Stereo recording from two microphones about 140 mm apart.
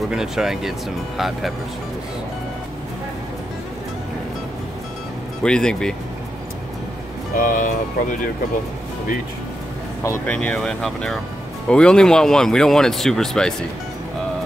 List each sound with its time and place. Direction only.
0.1 s speech: 5° right (ahead or behind)
5.4 s speech: 5° left (ahead or behind)
7.3 s speech: 70° left (ahead or behind)
10.2 s speech: 10° left (ahead or behind)